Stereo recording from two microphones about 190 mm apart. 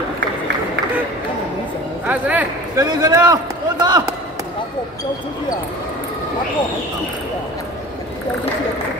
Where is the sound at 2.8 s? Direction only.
20° right (ahead or behind).